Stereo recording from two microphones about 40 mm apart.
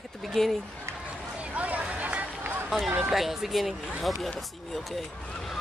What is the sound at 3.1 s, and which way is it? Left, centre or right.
Speech, centre.